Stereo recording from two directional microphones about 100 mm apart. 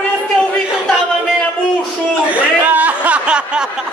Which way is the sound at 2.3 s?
15° right (ahead or behind).